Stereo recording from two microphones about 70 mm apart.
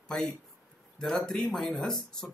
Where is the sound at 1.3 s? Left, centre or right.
Centre.